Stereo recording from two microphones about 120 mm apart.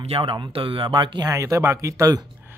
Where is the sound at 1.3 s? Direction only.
25° right (ahead or behind).